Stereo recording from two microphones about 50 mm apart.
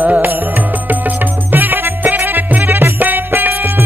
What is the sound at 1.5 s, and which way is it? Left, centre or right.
Music, right.